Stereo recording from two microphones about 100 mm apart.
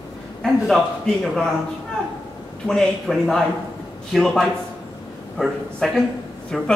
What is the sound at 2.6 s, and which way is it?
Speech, 5° left (ahead or behind).